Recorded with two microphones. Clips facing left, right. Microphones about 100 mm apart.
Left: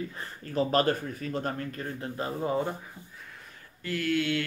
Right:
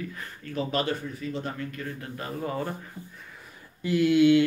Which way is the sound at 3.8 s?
15° right (ahead or behind).